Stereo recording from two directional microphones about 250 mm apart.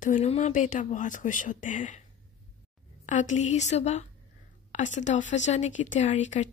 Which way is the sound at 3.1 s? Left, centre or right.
Left.